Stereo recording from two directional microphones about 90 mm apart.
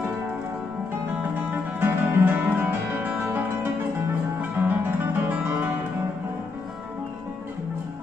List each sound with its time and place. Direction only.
1.3 s music: 20° right (ahead or behind)